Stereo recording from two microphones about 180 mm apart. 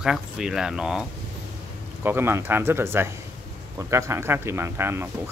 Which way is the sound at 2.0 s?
10° right (ahead or behind).